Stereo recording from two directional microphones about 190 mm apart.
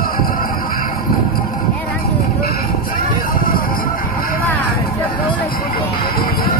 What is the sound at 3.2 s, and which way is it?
Vehicle, 50° left (ahead or behind).